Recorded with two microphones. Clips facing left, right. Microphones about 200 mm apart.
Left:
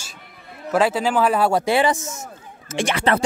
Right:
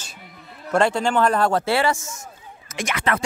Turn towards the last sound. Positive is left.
turn(degrees=30)  # may be behind; listen again after turning